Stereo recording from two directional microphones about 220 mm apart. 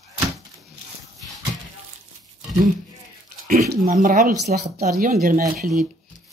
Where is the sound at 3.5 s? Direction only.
35° right (ahead or behind).